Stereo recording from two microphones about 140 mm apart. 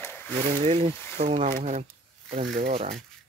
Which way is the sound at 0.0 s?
15° left (ahead or behind).